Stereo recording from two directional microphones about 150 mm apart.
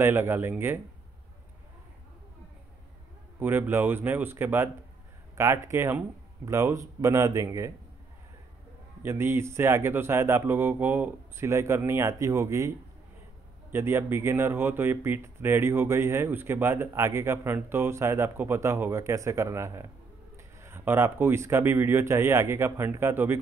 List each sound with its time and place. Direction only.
0.0 s speech: 15° right (ahead or behind)
3.3 s speech: 15° right (ahead or behind)
9.0 s speech: 15° right (ahead or behind)